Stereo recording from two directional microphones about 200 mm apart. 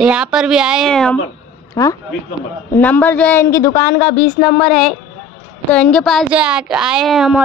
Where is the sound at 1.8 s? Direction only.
15° left (ahead or behind).